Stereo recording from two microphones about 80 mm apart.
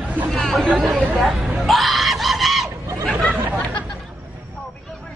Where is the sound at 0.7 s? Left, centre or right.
Centre.